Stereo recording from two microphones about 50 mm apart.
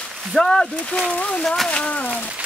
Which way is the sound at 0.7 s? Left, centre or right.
Left.